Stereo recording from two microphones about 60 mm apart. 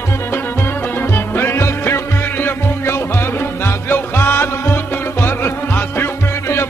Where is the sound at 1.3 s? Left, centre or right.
Left.